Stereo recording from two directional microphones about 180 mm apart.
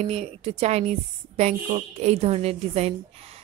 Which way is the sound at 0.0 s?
35° right (ahead or behind).